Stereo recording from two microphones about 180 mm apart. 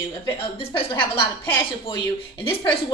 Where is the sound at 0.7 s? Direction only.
30° left (ahead or behind).